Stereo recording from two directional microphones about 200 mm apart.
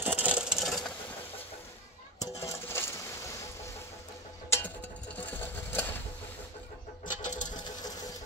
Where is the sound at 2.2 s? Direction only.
15° left (ahead or behind).